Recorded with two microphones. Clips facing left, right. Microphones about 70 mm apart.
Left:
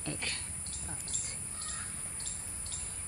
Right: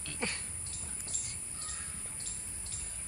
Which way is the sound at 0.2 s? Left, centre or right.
Right.